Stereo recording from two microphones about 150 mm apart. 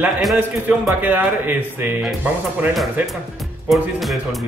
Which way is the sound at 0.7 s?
10° right (ahead or behind).